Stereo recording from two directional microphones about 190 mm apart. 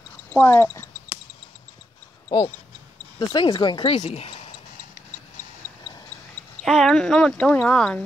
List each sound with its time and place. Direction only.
0.3 s speech: 10° left (ahead or behind)
2.2 s speech: 20° left (ahead or behind)
6.6 s speech: centre (ahead or behind)